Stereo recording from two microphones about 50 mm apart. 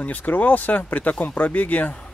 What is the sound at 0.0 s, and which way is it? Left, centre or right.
Speech, left.